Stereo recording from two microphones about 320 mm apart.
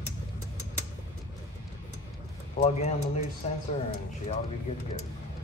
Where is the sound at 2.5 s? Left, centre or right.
Centre.